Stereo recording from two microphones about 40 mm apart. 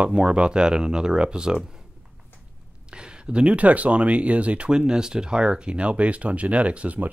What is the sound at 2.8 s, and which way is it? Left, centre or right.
Speech, right.